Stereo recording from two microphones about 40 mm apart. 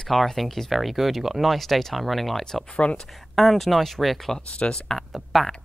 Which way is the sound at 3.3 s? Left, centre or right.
Centre.